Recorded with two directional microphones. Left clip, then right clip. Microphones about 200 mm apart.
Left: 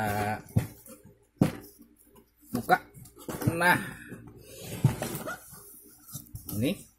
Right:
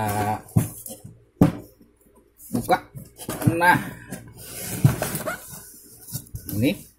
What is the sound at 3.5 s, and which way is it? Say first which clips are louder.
Speech: right 6 dB; 25° left (ahead or behind).